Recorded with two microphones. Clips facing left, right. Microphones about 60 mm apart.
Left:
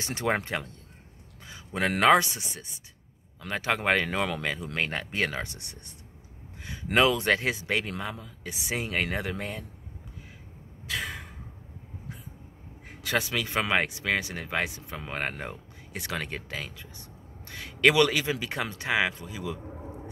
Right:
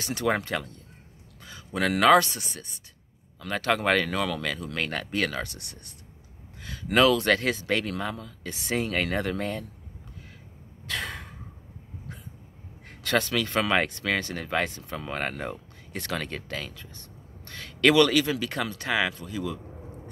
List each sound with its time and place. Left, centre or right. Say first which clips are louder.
0.0 s speech: right 2 dB; left; by 9.7 s centre
10.9 s a sound: right 1 dB; centre
12.8 s speech: right 3 dB; centre